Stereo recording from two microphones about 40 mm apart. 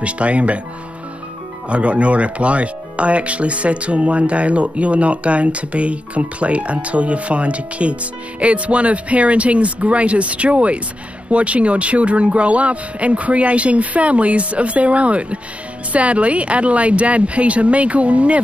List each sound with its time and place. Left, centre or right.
0.0 s speech: right
1.7 s speech: right